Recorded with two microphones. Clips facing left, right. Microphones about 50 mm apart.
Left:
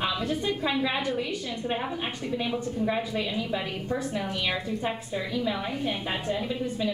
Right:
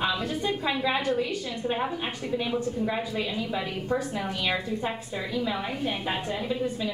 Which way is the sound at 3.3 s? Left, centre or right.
Centre.